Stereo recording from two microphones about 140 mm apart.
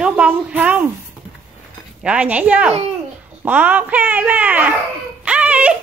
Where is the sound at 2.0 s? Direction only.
10° right (ahead or behind).